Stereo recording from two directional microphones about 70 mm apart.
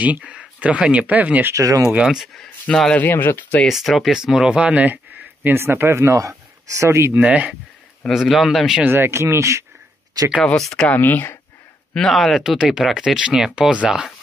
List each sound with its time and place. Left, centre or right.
0.0 s speech: right
1.5 s speech: right
2.0 s speech: centre
2.9 s speech: left
3.6 s speech: centre
4.6 s speech: right
7.2 s speech: right
8.1 s speech: centre
8.8 s speech: right
10.6 s speech: centre
10.9 s speech: left
11.9 s speech: centre